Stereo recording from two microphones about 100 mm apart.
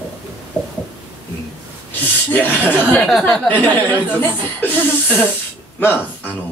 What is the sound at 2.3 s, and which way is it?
Speech, 20° left (ahead or behind).